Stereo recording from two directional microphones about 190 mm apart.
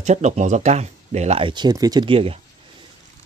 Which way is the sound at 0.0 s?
40° right (ahead or behind).